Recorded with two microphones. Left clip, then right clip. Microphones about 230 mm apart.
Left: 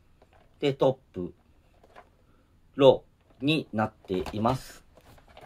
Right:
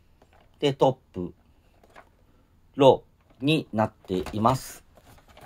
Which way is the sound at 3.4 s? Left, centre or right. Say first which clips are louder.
Right 3 dB; right.